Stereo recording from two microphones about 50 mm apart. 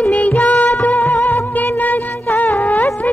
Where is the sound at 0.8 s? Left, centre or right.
Left.